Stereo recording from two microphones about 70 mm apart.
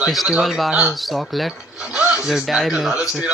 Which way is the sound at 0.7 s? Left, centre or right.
Centre.